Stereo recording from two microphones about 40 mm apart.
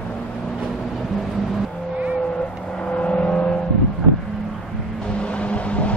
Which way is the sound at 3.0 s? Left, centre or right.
Left.